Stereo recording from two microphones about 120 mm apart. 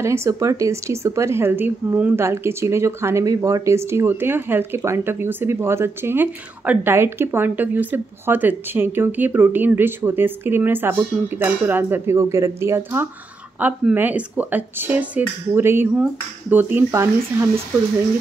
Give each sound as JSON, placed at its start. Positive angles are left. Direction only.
{"t": 0.0, "sound": "speech", "side_deg": -25}